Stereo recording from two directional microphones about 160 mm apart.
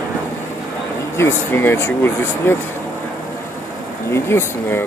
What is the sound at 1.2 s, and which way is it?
Speech, 15° left (ahead or behind).